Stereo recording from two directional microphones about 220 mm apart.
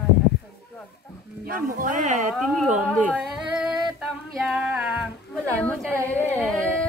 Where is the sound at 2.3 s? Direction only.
Centre (ahead or behind).